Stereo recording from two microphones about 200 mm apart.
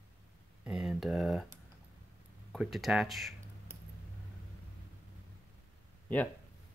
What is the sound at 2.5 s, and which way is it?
Speech, centre (ahead or behind).